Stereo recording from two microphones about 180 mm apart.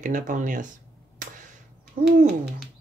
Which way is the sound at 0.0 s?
45° right (ahead or behind).